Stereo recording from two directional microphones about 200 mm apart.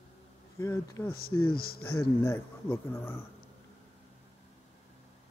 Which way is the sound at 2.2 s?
15° left (ahead or behind).